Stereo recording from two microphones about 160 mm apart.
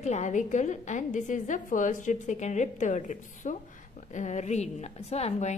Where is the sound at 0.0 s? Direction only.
45° left (ahead or behind).